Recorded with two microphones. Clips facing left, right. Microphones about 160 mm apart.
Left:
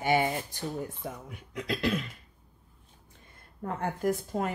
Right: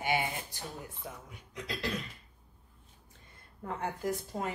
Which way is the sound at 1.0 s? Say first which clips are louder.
Left 6 dB; 60° left (ahead or behind).